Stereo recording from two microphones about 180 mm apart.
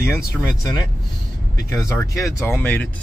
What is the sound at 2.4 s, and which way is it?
Speech, 15° left (ahead or behind).